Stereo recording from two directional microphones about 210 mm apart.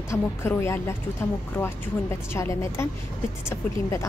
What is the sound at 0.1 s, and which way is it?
Speech, 10° left (ahead or behind).